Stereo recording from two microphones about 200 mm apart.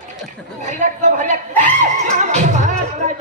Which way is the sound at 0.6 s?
35° right (ahead or behind).